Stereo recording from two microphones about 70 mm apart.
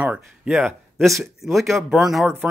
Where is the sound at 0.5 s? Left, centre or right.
Centre.